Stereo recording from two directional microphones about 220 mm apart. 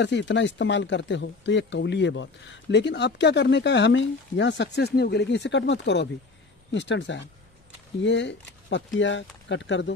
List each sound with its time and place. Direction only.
0.0 s speech: 55° left (ahead or behind)